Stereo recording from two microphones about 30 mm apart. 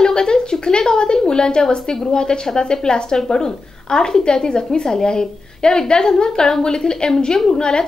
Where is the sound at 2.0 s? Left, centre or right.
Left.